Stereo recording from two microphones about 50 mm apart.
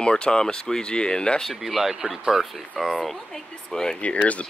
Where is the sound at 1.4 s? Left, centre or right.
Centre.